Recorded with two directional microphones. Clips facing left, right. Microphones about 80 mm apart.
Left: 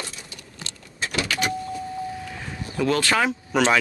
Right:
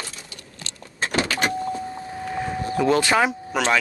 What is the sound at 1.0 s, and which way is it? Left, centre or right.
Power windows, right.